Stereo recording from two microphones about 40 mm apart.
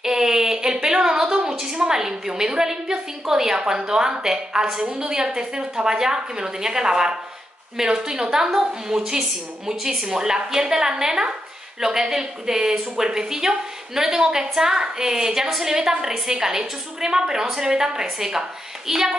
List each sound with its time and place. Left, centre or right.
0.0 s a woman's voice: centre